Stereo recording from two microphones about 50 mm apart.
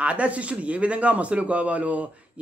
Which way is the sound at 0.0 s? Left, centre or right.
Right.